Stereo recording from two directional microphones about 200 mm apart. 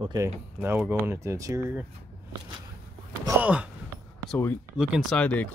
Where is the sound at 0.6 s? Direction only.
10° right (ahead or behind).